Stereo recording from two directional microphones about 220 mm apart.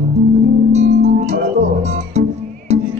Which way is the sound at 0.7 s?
30° right (ahead or behind).